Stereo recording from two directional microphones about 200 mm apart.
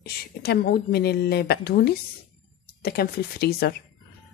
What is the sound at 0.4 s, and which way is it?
A woman's voice, 50° left (ahead or behind).